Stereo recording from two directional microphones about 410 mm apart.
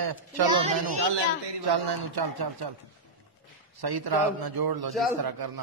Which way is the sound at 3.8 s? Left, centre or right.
Right.